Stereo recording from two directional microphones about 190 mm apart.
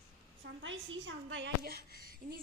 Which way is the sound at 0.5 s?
80° right.